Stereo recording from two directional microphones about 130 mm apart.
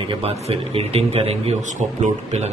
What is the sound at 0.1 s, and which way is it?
A man's voice, 50° right (ahead or behind).